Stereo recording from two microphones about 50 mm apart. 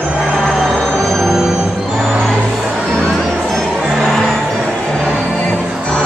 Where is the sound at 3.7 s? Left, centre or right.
Centre.